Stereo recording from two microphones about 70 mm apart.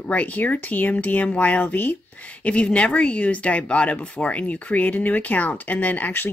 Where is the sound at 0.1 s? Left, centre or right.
Left.